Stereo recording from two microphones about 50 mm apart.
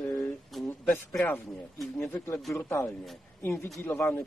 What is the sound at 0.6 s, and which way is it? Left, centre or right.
Speech, left.